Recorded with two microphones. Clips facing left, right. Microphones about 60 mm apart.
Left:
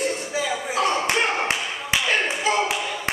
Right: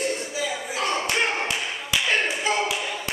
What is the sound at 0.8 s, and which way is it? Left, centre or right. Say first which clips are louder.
Clapping: left 1 dB; centre.